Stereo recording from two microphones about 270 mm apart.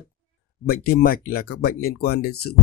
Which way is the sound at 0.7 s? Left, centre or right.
Left.